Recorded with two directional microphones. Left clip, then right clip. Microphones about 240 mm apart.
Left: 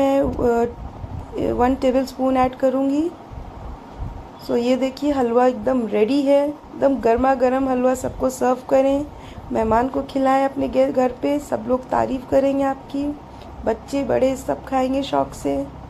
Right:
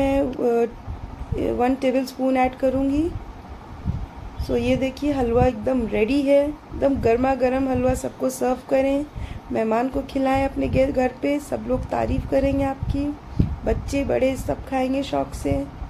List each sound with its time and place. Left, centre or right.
0.0 s a sound: centre
1.3 s speech: centre
4.5 s speech: centre